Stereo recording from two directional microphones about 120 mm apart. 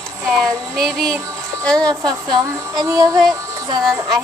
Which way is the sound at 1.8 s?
35° right (ahead or behind).